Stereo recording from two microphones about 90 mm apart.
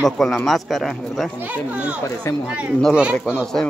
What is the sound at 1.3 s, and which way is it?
Speech, 15° right (ahead or behind).